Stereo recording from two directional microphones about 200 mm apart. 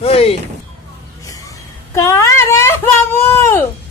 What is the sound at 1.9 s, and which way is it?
Speech, 15° left (ahead or behind).